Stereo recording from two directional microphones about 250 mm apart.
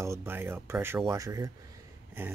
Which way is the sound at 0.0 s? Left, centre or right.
Centre.